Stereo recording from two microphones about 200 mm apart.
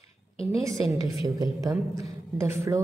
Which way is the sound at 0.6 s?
15° right (ahead or behind).